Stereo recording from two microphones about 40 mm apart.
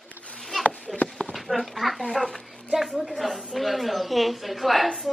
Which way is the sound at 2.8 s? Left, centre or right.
Centre.